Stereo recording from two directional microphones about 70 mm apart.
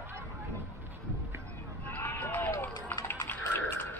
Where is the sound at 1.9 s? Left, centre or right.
Left.